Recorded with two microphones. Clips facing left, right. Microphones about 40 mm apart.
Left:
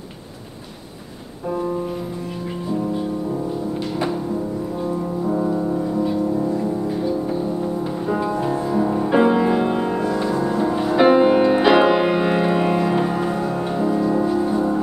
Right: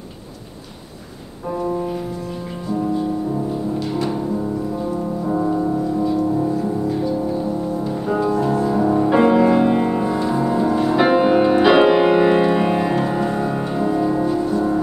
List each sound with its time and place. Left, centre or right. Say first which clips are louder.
5.2 s music: right 2 dB; centre
8.2 s music: right 6 dB; centre
8.6 s music: right 3 dB; centre
10.3 s music: right 2 dB; centre
10.6 s music: left 2 dB; centre